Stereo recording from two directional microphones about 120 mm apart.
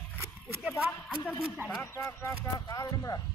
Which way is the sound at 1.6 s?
15° right (ahead or behind).